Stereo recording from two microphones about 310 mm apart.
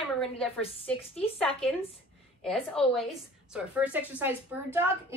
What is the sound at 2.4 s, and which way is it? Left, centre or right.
A woman's voice, centre.